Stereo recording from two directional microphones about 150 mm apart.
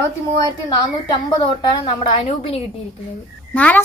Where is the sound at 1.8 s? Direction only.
40° left (ahead or behind).